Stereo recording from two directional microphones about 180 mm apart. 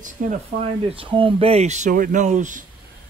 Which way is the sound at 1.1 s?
30° right (ahead or behind).